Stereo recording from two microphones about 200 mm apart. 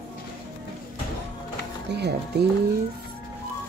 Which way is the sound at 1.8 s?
55° right (ahead or behind).